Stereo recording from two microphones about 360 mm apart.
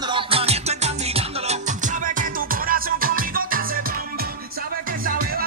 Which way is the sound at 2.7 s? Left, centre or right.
Right.